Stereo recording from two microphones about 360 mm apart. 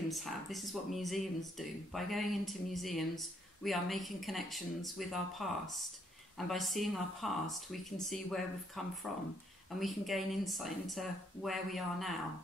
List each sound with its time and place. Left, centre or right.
0.1 s speech: centre